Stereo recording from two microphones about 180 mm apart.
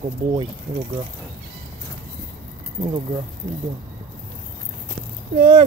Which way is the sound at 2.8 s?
30° right (ahead or behind).